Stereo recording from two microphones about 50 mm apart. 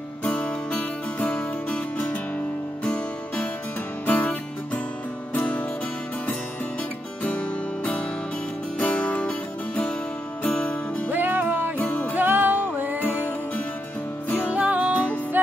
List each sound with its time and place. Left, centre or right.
0.2 s music: left
7.2 s music: left
10.4 s music: left
11.1 s music: right
11.8 s music: left
12.2 s music: right
13.0 s music: left
14.5 s music: right
15.3 s music: right